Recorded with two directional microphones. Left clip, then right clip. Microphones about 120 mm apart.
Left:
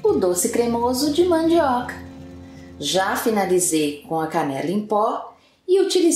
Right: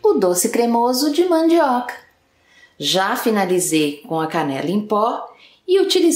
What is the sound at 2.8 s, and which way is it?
A woman's voice, 20° right (ahead or behind).